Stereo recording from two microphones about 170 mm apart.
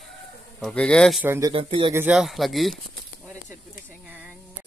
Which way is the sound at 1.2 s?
15° right (ahead or behind).